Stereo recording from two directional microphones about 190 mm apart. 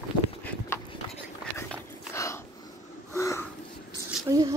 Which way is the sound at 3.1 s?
15° left (ahead or behind).